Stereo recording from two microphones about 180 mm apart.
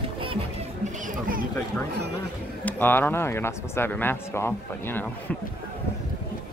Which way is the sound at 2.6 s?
10° left (ahead or behind).